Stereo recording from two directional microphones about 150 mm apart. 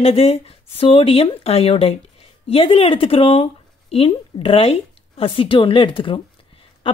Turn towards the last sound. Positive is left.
turn(degrees=35)  # may be behind; listen again after turning